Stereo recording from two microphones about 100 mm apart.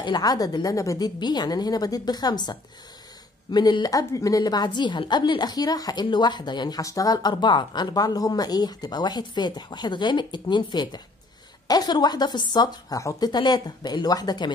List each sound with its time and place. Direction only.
0.0 s a woman's voice: 45° left (ahead or behind)
3.5 s speech: 45° left (ahead or behind)
6.8 s speech: 35° left (ahead or behind)